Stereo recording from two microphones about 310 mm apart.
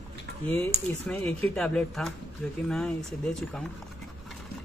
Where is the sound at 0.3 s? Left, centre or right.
Right.